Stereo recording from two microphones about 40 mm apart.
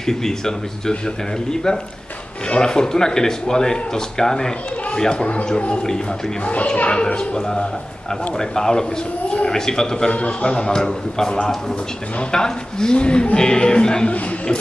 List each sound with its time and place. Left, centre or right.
0.0 s speech: centre
6.4 s a child's voice: left